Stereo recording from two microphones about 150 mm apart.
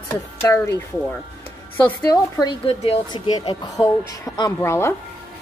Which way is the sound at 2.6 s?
40° left (ahead or behind).